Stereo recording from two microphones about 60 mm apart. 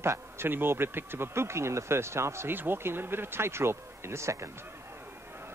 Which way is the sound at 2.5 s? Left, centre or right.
Right.